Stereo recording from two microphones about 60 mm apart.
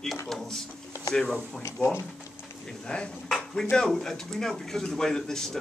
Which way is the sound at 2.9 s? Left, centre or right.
Centre.